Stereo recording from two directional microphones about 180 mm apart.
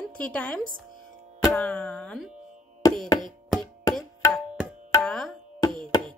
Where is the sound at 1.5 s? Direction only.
5° left (ahead or behind).